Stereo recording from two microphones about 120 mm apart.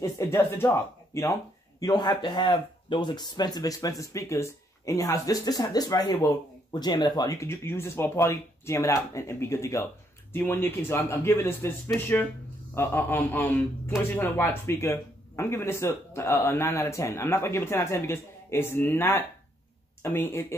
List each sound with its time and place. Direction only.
0.0 s a man's voice: 25° left (ahead or behind)
12.7 s a man's voice: 20° left (ahead or behind)